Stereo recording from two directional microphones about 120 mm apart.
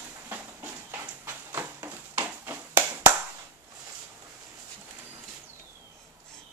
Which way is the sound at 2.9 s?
20° right (ahead or behind).